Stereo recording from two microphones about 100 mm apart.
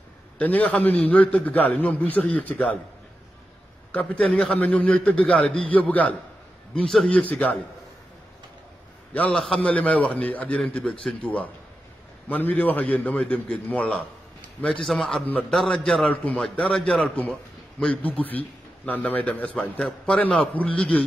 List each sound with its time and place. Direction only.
0.4 s a man's voice: 15° left (ahead or behind)
3.9 s a man's voice: 15° left (ahead or behind)
9.1 s a man's voice: 10° left (ahead or behind)